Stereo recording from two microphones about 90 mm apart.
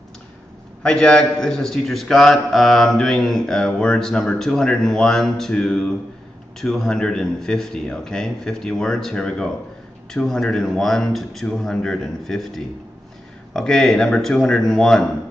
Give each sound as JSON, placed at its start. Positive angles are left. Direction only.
{"t": 0.8, "sound": "a man's voice", "side_deg": 10}